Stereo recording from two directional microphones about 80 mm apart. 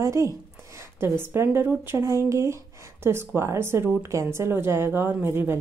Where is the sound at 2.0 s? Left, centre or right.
Right.